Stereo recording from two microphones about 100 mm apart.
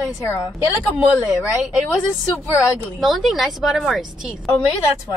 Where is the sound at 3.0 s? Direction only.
Centre (ahead or behind).